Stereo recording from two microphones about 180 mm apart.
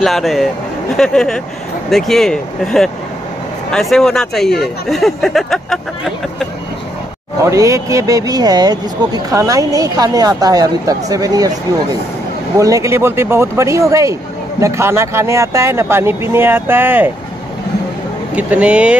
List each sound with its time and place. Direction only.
0.0 s speech: centre (ahead or behind)
3.9 s speech: 5° left (ahead or behind)
7.4 s speech: 15° right (ahead or behind)
18.3 s speech: 5° right (ahead or behind)